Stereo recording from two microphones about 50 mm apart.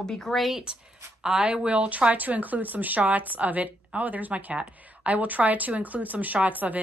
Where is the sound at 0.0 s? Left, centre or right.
Centre.